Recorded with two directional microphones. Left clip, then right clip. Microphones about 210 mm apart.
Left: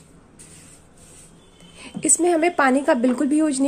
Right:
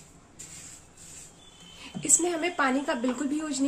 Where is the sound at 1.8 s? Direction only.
40° left (ahead or behind).